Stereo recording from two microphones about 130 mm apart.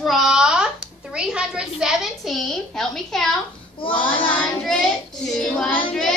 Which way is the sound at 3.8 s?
40° left (ahead or behind).